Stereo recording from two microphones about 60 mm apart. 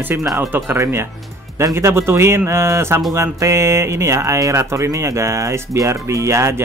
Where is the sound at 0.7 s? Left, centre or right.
Right.